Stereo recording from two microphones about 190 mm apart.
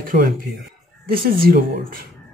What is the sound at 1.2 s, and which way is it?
Speech, 50° right (ahead or behind).